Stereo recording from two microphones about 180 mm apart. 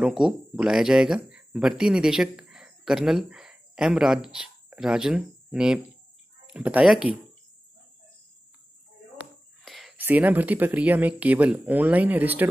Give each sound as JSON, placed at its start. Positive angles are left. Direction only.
{"t": 0.0, "sound": "speech", "side_deg": -5}
{"t": 9.7, "sound": "a sound", "side_deg": 0}
{"t": 9.9, "sound": "speech", "side_deg": -10}